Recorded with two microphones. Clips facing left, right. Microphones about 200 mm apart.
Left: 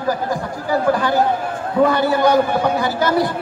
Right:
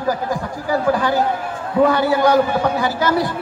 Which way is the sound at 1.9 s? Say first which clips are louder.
Even; 10° right (ahead or behind).